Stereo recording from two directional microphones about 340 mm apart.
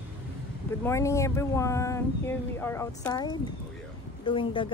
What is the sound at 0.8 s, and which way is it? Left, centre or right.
Speech, centre.